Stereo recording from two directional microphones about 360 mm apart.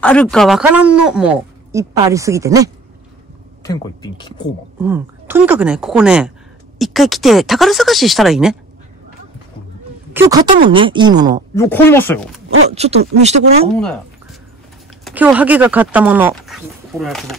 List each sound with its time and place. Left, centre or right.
0.0 s speech: centre
3.6 s speech: centre
4.8 s speech: centre
10.1 s speech: centre
11.5 s speech: centre
12.4 s speech: centre
15.0 s speech: centre